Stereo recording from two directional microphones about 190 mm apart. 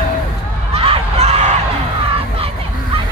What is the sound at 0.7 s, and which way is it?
Crowd, 30° right (ahead or behind).